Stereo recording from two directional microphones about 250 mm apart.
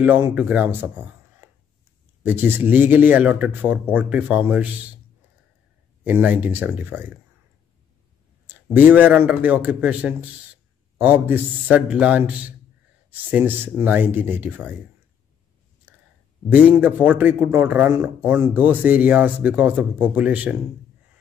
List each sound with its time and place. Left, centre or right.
0.0 s a man's voice: centre
6.0 s a man's voice: centre
8.7 s a man's voice: centre
16.5 s a man's voice: centre